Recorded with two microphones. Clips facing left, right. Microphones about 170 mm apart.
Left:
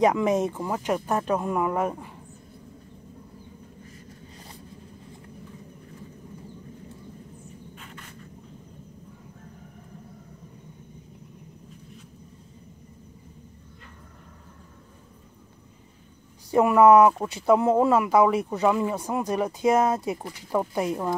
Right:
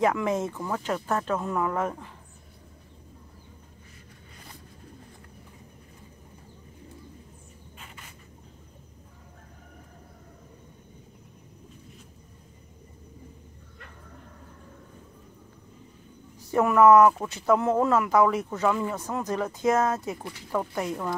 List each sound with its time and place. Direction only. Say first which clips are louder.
0.0 s speech: left 4 dB; 20° left (ahead or behind)
16.4 s speech: left 2 dB; 15° left (ahead or behind)